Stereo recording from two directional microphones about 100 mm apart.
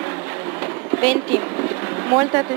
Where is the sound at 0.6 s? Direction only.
15° right (ahead or behind).